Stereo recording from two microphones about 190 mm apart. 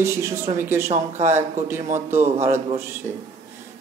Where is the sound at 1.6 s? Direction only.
15° right (ahead or behind).